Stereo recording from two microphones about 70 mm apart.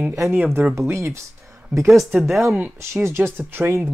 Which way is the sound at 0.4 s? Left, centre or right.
Right.